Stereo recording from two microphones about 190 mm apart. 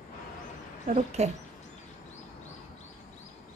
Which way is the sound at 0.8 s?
35° right (ahead or behind).